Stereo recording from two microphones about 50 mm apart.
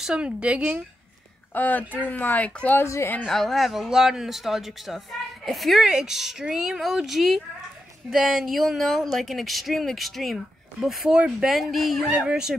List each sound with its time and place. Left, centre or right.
0.0 s a woman's voice: centre
1.5 s speech: left
2.8 s a woman's voice: left
3.3 s speech: centre
5.9 s speech: centre
11.1 s speech: centre
11.3 s speech: centre
12.2 s speech: centre